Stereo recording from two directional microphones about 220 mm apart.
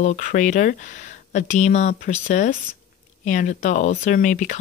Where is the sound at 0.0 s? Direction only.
35° left (ahead or behind).